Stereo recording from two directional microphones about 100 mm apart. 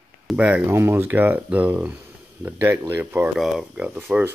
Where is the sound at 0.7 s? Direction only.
25° right (ahead or behind).